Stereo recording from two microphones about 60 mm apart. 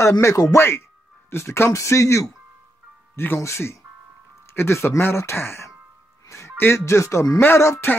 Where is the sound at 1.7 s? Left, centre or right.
Left.